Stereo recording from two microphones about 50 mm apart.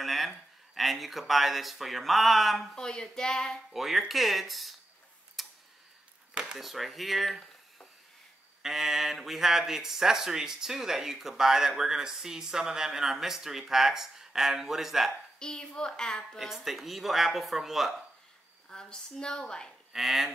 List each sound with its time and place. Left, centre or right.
0.0 s a sound: centre
0.7 s speech: centre
2.7 s speech: centre
3.7 s speech: centre
5.4 s tick-tock: centre
6.6 s speech: centre
15.3 s speech: centre
16.3 s speech: centre
18.7 s speech: centre
19.9 s speech: centre